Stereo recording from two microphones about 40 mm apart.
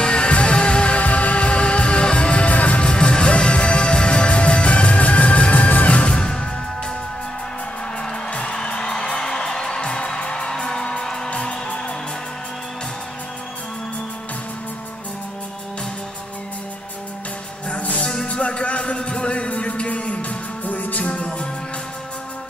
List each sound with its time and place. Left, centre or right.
0.0 s music: left
1.0 s music: left
2.9 s music: left
6.1 s music: centre
8.3 s music: left
18.0 s music: centre
18.3 s music: left